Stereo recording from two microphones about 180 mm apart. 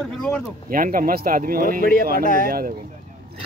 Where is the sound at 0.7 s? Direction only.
50° right (ahead or behind).